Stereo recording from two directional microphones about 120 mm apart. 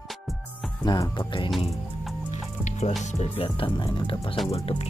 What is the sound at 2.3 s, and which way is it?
Music, 75° left (ahead or behind).